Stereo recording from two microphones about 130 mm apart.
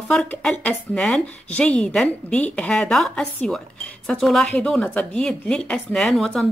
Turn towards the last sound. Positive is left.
turn(degrees=5)  # may be behind; listen again after turning